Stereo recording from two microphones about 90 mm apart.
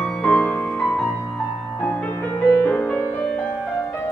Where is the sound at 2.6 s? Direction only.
20° left (ahead or behind).